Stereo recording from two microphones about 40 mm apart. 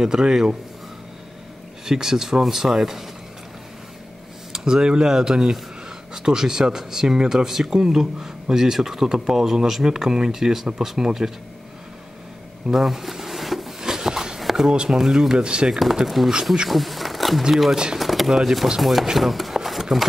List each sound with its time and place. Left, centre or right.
0.0 s speech: centre
1.9 s speech: centre
4.5 s speech: centre
12.6 s a sound: centre
14.7 s speech: right
15.8 s speech: centre
16.6 s bee: centre
17.4 s speech: centre
17.9 s a sound: centre
18.3 s speech: centre
19.1 s a sound: centre